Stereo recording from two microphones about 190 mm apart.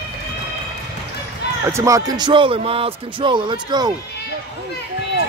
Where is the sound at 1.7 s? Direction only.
15° right (ahead or behind).